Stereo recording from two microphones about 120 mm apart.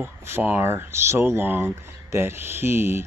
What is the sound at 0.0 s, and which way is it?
Speech, 20° right (ahead or behind).